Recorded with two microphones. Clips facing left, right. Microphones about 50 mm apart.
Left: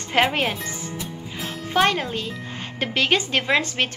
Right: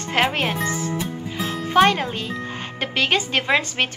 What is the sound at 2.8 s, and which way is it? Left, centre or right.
Speech, centre.